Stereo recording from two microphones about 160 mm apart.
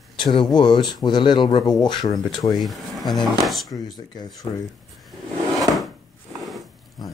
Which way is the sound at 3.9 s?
25° left (ahead or behind).